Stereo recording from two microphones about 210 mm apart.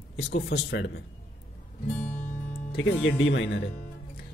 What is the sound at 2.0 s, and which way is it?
Music, 10° left (ahead or behind).